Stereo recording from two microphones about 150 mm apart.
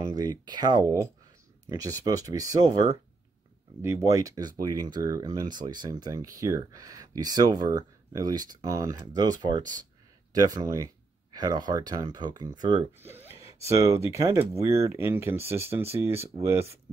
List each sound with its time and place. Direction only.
0.1 s speech: 30° right (ahead or behind)
13.0 s speech: 15° right (ahead or behind)